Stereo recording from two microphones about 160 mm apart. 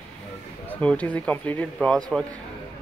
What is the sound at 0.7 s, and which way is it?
Speech, 10° left (ahead or behind).